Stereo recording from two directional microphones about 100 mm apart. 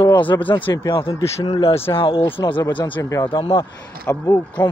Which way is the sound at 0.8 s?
65° left (ahead or behind).